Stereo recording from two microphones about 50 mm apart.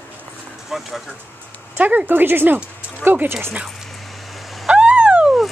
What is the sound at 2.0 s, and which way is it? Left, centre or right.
Speech, right.